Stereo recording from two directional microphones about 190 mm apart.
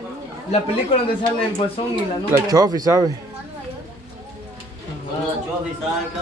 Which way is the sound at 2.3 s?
20° right (ahead or behind).